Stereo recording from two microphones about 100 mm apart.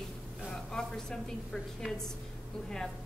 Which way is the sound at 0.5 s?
5° left (ahead or behind).